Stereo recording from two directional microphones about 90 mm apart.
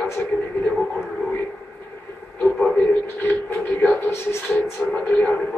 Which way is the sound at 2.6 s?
20° left (ahead or behind).